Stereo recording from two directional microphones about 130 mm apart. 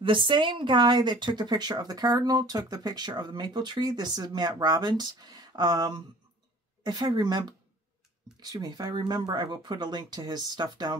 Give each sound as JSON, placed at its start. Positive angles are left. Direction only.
{"t": 0.0, "sound": "speech", "side_deg": -40}